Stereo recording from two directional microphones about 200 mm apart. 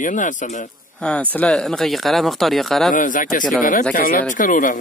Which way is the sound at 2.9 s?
40° left (ahead or behind).